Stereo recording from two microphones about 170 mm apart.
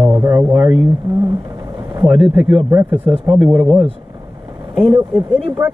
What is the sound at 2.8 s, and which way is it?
Speech, 30° right (ahead or behind).